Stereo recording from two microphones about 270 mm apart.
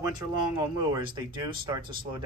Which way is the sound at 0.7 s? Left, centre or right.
Centre.